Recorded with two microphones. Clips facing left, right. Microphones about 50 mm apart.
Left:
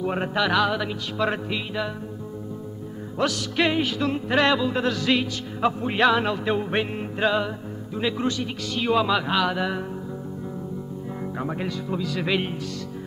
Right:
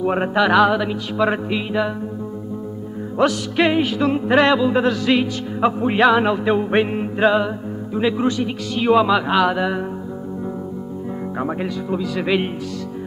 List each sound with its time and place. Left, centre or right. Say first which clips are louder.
0.0 s music: right 6 dB; right
3.2 s music: right 6 dB; centre
5.2 s music: right 5 dB; right
11.6 s music: right 5 dB; centre